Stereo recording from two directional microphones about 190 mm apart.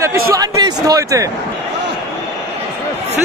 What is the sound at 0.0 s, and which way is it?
Speech, 15° right (ahead or behind).